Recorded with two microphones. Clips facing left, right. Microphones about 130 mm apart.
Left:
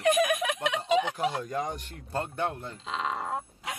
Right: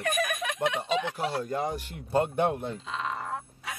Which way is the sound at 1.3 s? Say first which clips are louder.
Right 2 dB; 5° right (ahead or behind).